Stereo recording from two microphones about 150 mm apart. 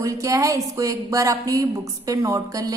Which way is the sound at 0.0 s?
20° right (ahead or behind).